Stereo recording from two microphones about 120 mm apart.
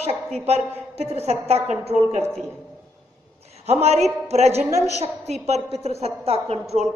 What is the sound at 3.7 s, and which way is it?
A woman's voice, 60° right (ahead or behind).